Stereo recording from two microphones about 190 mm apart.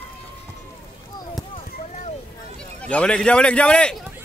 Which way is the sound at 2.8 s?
5° left (ahead or behind).